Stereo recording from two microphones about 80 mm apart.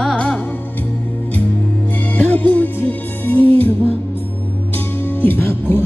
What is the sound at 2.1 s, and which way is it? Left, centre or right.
Music, centre.